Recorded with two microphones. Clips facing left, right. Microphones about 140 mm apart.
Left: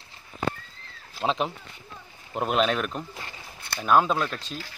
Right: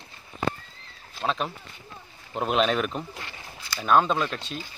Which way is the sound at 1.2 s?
20° left (ahead or behind).